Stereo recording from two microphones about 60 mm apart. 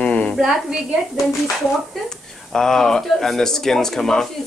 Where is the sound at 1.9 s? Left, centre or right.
Centre.